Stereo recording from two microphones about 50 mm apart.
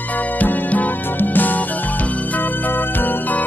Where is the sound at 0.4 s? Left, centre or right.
Left.